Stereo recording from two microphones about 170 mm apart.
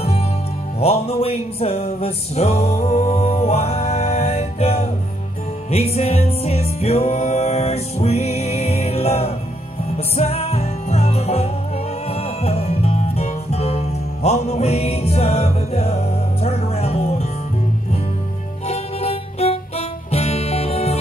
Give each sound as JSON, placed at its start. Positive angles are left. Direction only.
{"t": 0.7, "sound": "music", "side_deg": 35}
{"t": 18.7, "sound": "music", "side_deg": 35}